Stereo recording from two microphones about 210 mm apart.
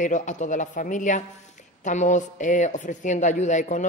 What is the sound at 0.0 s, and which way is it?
Speech, 35° left (ahead or behind).